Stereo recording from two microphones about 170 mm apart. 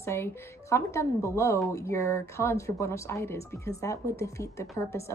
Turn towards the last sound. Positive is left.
turn(degrees=15)  # may be behind; listen again after turning